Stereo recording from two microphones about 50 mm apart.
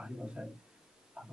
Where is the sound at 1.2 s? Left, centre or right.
Centre.